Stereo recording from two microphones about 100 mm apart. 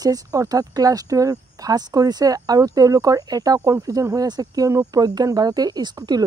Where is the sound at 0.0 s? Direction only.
40° right (ahead or behind).